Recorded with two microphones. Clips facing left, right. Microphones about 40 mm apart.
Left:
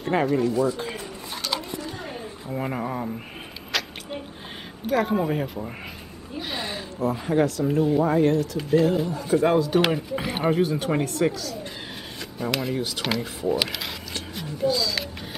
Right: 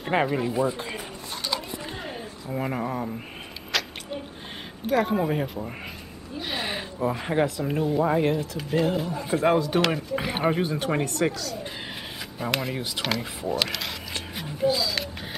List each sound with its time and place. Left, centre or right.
0.0 s speech: centre
2.5 s speech: centre
3.7 s a sound: centre
4.8 s speech: centre
6.6 s speech: right
8.5 s speech: centre
12.4 s speech: centre
13.5 s speech: centre
14.1 s a sound: centre